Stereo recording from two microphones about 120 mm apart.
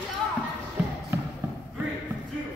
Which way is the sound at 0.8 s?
10° right (ahead or behind).